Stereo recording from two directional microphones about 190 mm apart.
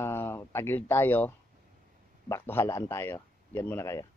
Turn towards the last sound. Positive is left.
turn(degrees=15)  # may be behind; listen again after turning